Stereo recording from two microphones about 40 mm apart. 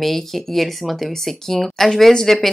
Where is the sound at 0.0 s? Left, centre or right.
Centre.